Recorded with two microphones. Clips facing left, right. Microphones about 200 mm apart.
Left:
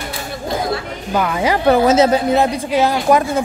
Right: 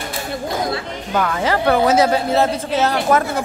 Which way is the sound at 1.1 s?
10° left (ahead or behind).